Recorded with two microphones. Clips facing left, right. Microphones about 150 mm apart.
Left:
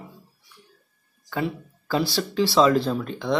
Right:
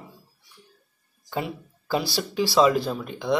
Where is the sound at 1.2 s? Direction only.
15° right (ahead or behind).